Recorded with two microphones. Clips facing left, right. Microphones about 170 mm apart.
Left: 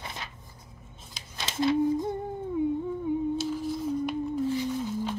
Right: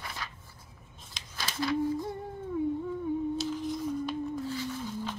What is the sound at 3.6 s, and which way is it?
Music, 10° left (ahead or behind).